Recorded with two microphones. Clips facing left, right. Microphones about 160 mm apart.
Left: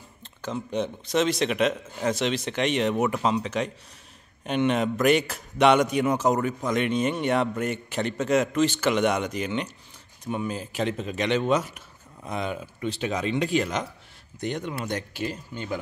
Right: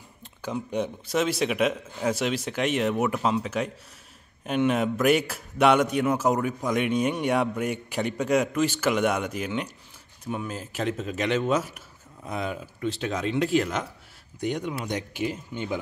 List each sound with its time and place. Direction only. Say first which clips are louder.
0.2 s a man's voice: even; 10° right (ahead or behind)